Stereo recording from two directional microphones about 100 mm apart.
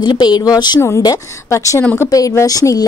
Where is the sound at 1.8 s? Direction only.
20° left (ahead or behind).